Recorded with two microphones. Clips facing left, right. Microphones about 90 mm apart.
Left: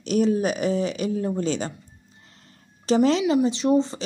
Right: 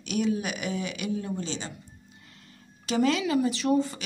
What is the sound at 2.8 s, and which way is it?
Speech, 35° left (ahead or behind).